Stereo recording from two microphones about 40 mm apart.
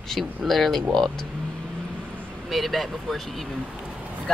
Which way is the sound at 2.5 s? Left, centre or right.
Centre.